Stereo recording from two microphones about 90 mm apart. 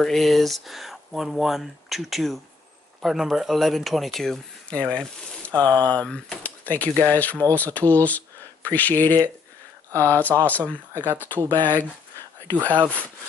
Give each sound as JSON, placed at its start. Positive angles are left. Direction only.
{"t": 0.0, "sound": "speech", "side_deg": 0}